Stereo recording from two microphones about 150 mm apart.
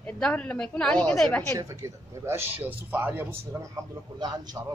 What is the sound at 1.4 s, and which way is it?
Speech, 20° right (ahead or behind).